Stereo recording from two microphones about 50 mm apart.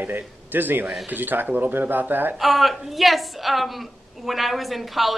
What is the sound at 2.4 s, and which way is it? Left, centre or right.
A woman's voice, centre.